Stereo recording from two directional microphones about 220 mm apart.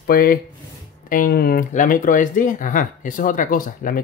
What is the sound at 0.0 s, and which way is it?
Speech, 40° left (ahead or behind).